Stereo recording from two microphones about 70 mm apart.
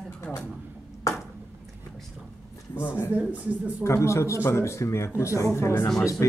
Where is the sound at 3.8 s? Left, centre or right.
Left.